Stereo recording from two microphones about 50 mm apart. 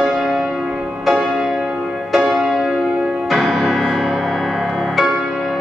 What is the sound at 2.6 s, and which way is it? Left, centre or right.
Music, centre.